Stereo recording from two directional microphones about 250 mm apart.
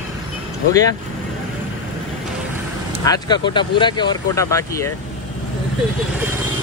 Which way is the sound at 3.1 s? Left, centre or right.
Centre.